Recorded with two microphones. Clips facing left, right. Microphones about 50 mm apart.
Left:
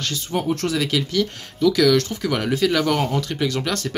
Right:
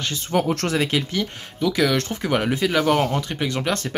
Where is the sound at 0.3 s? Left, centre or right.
Right.